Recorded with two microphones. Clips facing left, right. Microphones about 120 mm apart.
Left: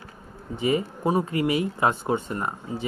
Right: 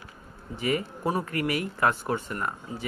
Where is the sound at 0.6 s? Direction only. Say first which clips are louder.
Left 4 dB; 20° left (ahead or behind).